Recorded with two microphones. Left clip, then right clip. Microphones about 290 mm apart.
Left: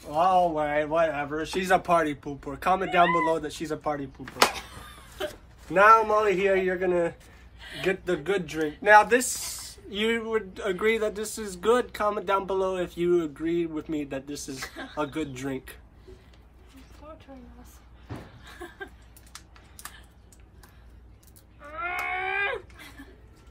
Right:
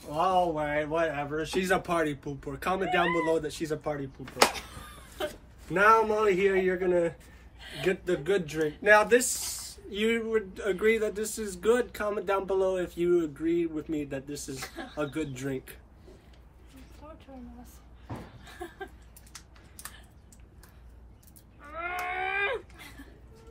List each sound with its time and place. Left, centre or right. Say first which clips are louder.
0.1 s speech: left 4 dB; centre
4.4 s cat: left 1 dB; centre
5.7 s speech: left 4 dB; centre
14.6 s speech: left 2 dB; centre
15.0 s speech: left 2 dB; centre
18.4 s a sound: left 2 dB; centre
21.6 s livestock: left 3 dB; centre